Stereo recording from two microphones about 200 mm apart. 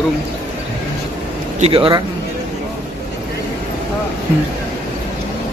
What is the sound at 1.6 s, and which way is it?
Speech, 25° right (ahead or behind).